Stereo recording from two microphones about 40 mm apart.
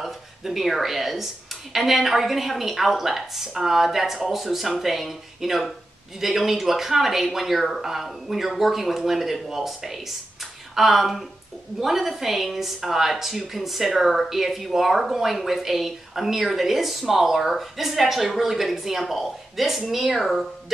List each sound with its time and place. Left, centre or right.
0.4 s a woman's voice: centre